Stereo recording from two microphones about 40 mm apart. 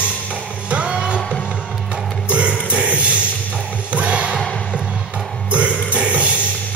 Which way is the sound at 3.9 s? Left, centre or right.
Right.